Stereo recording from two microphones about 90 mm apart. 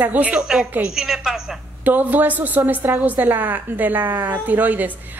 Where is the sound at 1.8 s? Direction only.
20° right (ahead or behind).